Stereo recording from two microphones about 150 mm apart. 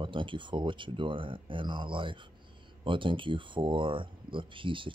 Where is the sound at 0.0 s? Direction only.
35° right (ahead or behind).